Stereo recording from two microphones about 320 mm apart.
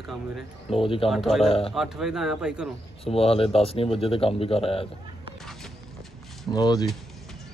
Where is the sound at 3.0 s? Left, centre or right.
Centre.